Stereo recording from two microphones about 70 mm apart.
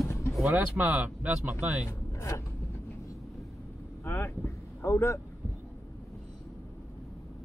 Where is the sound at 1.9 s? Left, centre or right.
Left.